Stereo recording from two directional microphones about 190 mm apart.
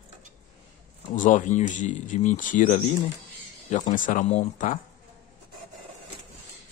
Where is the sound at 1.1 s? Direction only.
40° left (ahead or behind).